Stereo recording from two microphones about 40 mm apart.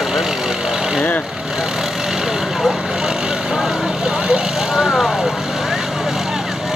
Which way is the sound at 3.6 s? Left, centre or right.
Centre.